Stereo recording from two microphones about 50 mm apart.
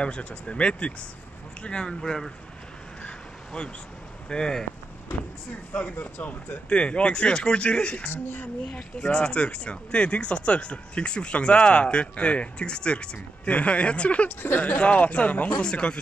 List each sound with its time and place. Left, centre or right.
0.0 s speech: left
3.0 s crow: left
4.3 s speech: centre
5.7 s speech: left
5.9 s speech: left
6.7 s speech: left
8.0 s speech: left
8.7 s speech: centre
14.3 s speech: left
14.6 s speech: left
15.6 s speech: centre